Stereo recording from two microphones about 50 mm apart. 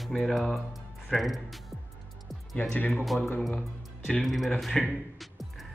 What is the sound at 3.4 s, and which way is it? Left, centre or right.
A man's voice, centre.